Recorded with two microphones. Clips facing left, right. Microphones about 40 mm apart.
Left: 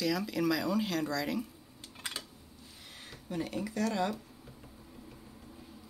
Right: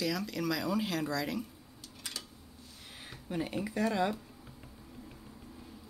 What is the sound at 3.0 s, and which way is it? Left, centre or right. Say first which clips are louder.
Speech: right 1 dB; centre.